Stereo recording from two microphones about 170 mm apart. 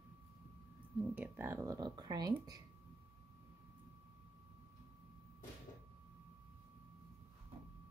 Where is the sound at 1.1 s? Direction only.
10° right (ahead or behind).